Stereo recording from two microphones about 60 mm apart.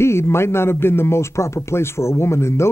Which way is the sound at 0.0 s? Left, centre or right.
Left.